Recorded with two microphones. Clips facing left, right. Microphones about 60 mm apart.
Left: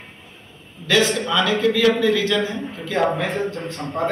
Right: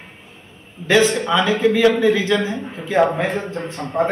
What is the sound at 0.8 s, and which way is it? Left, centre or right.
A man's voice, right.